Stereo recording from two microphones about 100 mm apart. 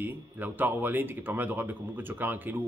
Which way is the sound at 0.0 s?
20° right (ahead or behind).